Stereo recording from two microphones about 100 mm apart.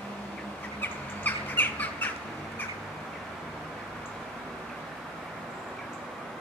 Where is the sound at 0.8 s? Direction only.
20° left (ahead or behind).